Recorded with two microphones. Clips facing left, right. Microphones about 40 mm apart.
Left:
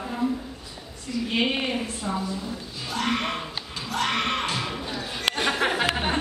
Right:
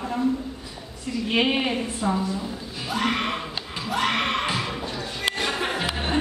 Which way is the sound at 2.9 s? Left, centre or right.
Centre.